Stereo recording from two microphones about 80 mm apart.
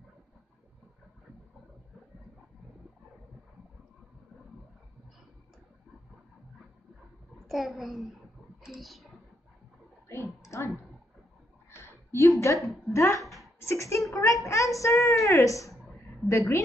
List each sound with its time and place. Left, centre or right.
7.4 s a child's voice: centre
10.4 s clicking: left
11.7 s a sound: left
12.9 s speech: left
13.6 s a sound: left
16.3 s a woman's voice: left